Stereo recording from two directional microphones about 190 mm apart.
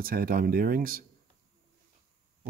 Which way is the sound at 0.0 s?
50° right (ahead or behind).